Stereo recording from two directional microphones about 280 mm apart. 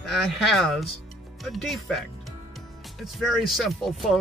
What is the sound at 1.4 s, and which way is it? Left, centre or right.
Speech, centre.